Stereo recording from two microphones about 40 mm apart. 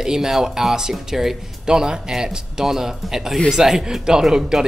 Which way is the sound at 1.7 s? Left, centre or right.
Centre.